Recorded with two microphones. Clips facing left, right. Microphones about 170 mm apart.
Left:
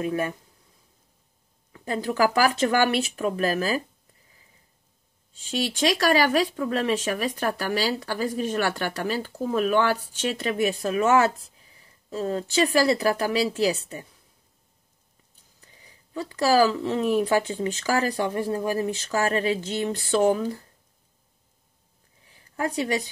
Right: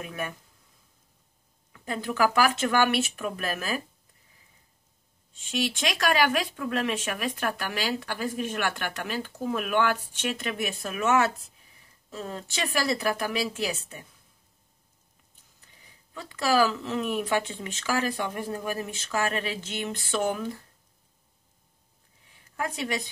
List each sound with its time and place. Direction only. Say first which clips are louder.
0.0 s speech: left 8 dB; 30° left (ahead or behind)
1.7 s speech: left 4 dB; 35° left (ahead or behind)
5.5 s speech: left 5 dB; 35° left (ahead or behind)
16.1 s speech: left 4 dB; 35° left (ahead or behind)
22.6 s speech: left 5 dB; 35° left (ahead or behind)